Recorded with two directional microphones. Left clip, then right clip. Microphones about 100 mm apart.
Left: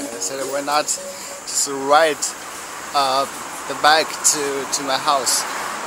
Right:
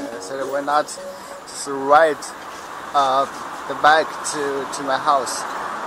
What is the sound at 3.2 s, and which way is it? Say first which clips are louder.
Speech: even; 30° left (ahead or behind).